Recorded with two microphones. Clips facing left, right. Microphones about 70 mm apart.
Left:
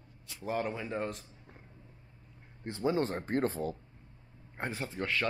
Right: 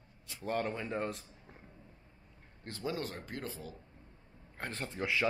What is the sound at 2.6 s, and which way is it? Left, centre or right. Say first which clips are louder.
Speech: left 7 dB; left.